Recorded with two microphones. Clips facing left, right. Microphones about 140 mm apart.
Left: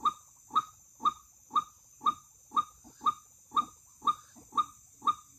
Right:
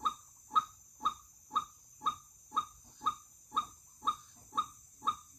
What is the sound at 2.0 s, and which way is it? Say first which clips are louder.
Pig: left 5 dB; 40° left (ahead or behind).